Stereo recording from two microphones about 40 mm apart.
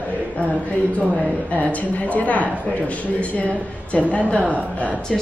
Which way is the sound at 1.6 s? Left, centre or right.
Left.